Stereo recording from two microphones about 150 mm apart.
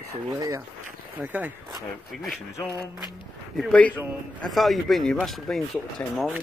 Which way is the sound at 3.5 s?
5° left (ahead or behind).